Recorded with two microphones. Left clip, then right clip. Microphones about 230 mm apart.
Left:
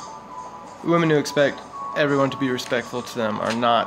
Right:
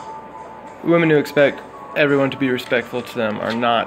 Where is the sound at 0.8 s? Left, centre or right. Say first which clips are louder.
Right 4 dB; centre.